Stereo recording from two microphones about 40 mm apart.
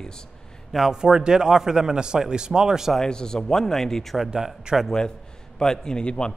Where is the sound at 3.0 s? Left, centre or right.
Centre.